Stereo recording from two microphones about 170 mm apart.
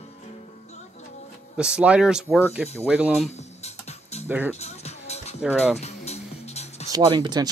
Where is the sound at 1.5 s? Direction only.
5° right (ahead or behind).